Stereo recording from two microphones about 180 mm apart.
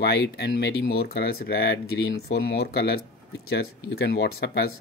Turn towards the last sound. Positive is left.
turn(degrees=65)  # may be behind; listen again after turning